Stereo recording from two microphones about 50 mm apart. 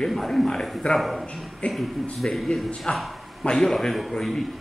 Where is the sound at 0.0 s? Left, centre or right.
Centre.